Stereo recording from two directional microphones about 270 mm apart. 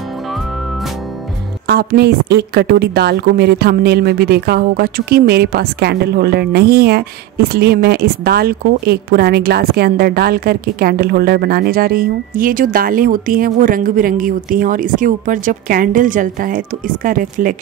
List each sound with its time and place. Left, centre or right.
1.7 s a woman's voice: right